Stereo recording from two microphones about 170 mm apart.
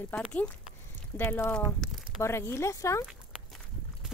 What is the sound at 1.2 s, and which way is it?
Speech, 15° left (ahead or behind).